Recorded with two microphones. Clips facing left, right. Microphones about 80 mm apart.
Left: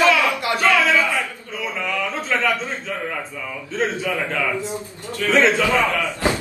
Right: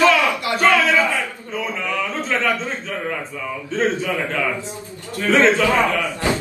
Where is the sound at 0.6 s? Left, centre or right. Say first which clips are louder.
Right 2 dB; right.